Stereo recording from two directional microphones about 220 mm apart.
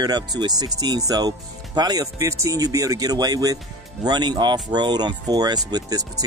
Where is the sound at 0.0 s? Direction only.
20° right (ahead or behind).